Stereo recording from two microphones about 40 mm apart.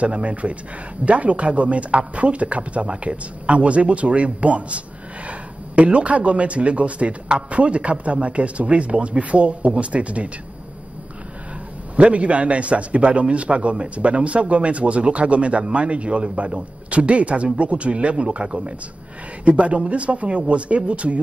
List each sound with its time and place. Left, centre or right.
0.0 s a man's voice: right
12.0 s a man's voice: right